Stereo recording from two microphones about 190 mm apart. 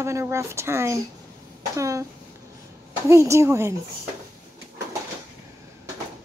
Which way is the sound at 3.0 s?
15° right (ahead or behind).